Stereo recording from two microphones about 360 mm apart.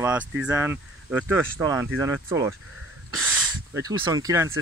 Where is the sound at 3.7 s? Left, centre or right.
Centre.